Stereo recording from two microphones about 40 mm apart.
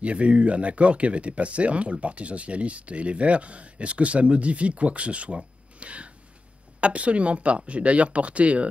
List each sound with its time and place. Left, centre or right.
0.0 s speech: right